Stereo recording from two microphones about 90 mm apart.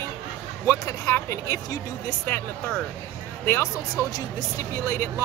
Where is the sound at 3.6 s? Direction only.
40° left (ahead or behind).